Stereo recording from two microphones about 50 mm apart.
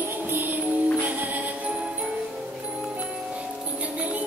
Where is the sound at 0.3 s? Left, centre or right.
Right.